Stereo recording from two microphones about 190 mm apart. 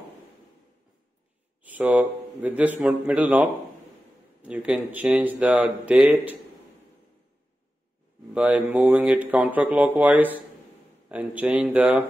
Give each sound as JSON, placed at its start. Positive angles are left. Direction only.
{"t": 1.6, "sound": "speech", "side_deg": -10}
{"t": 8.4, "sound": "speech", "side_deg": -10}